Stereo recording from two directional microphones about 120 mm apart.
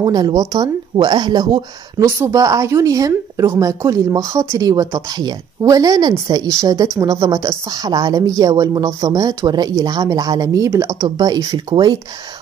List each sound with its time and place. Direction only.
0.0 s a woman's voice: 35° right (ahead or behind)
2.0 s a woman's voice: 25° right (ahead or behind)